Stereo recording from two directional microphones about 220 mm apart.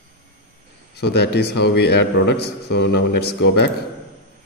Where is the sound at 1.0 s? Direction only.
50° left (ahead or behind).